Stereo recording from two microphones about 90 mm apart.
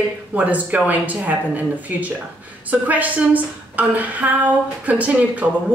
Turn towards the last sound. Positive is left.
turn(degrees=-15)  # may be behind; listen again after turning